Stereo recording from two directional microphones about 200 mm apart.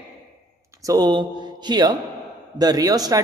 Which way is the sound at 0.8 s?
20° right (ahead or behind).